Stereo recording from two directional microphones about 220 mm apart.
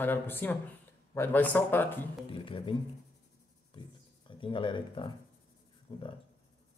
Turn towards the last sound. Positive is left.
turn(degrees=20)  # may be behind; listen again after turning